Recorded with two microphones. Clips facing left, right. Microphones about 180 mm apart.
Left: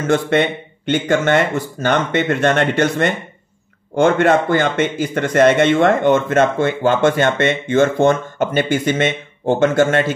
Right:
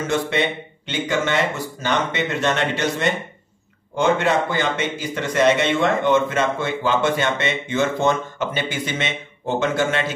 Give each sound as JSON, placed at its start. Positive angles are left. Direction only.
{"t": 0.1, "sound": "a man's voice", "side_deg": 50}